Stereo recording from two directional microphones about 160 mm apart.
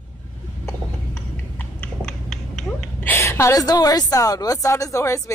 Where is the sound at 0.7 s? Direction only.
15° left (ahead or behind).